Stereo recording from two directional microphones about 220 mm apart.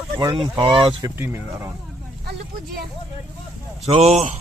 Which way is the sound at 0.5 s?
20° right (ahead or behind).